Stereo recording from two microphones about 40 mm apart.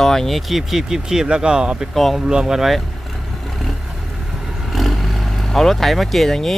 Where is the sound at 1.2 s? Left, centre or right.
Right.